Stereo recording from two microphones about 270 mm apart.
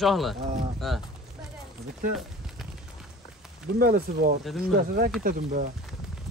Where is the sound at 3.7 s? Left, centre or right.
Right.